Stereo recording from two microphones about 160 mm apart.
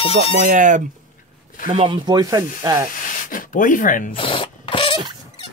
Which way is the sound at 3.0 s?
60° left (ahead or behind).